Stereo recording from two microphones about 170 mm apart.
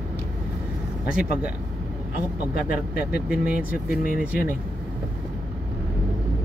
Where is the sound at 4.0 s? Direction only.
60° left (ahead or behind).